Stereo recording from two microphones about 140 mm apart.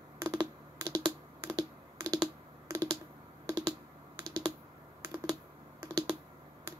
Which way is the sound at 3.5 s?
25° right (ahead or behind).